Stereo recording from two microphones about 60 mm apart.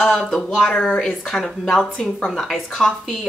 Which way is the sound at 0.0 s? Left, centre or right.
Centre.